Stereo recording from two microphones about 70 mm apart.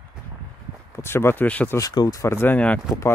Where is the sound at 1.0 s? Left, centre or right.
Left.